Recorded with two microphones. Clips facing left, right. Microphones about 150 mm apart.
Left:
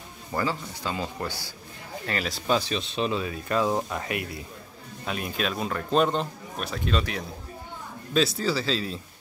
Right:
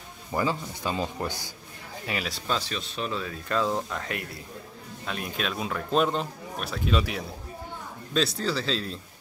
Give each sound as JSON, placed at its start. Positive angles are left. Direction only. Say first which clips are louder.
{"t": 0.3, "sound": "speech", "louder": "right 1 dB", "side_deg": -15}
{"t": 2.0, "sound": "speech", "louder": "left 2 dB", "side_deg": 0}
{"t": 2.4, "sound": "speech", "louder": "left 8 dB", "side_deg": 15}